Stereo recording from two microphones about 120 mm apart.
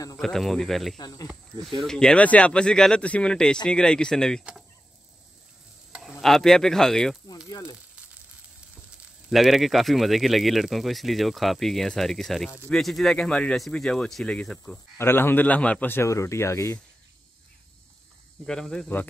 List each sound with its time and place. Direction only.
0.2 s speech: centre (ahead or behind)
0.9 s speech: 35° left (ahead or behind)
1.8 s speech: 5° left (ahead or behind)
5.9 s stir: 5° right (ahead or behind)
6.2 s speech: centre (ahead or behind)
7.4 s sizzle: 30° left (ahead or behind)
9.3 s speech: centre (ahead or behind)
15.0 s speech: 20° left (ahead or behind)
18.4 s speech: 5° left (ahead or behind)